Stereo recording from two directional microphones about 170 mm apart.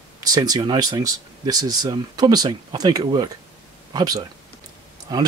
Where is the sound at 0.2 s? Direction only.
25° right (ahead or behind).